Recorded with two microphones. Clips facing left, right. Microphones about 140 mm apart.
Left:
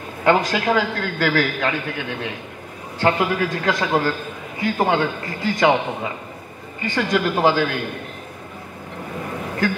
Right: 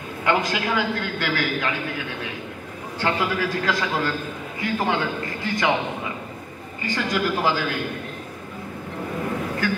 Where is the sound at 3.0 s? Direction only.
30° left (ahead or behind).